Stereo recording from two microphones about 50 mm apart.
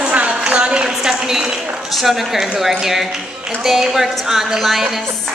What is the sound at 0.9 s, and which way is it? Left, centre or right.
A woman's voice, centre.